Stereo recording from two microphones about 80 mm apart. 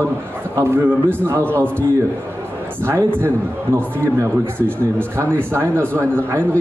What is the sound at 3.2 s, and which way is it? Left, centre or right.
A man's voice, right.